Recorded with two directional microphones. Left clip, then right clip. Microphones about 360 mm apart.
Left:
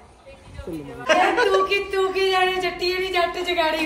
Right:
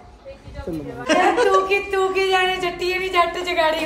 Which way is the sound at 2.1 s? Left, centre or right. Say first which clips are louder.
Right 1 dB; right.